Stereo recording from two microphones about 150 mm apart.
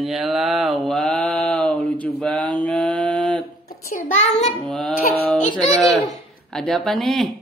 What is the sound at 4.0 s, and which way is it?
Child singing, 50° left (ahead or behind).